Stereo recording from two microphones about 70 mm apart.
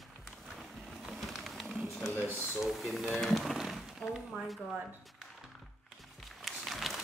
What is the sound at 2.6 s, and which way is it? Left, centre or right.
Speech, centre.